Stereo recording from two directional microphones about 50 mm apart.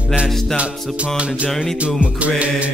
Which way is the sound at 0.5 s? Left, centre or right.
Right.